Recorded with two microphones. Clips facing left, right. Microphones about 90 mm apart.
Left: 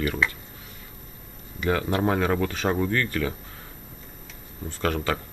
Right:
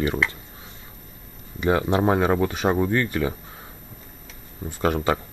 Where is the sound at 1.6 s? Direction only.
20° right (ahead or behind).